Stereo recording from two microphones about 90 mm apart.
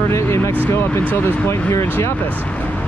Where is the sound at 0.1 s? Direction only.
30° left (ahead or behind).